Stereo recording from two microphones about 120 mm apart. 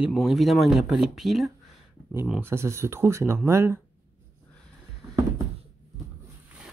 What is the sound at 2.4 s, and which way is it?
Speech, 20° right (ahead or behind).